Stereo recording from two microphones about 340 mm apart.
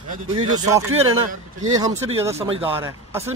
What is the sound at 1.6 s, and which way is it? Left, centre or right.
Speech, centre.